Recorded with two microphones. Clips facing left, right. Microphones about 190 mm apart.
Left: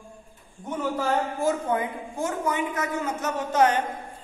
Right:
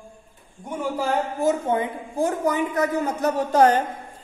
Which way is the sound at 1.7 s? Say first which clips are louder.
Right 3 dB; 30° right (ahead or behind).